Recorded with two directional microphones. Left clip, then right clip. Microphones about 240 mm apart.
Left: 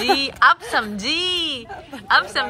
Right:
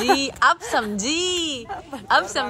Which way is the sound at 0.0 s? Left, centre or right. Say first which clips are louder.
Left 2 dB; centre.